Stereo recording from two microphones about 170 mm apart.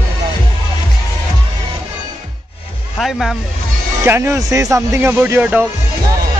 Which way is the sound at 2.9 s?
Centre (ahead or behind).